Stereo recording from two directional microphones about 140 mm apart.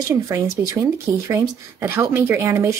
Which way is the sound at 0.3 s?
20° right (ahead or behind).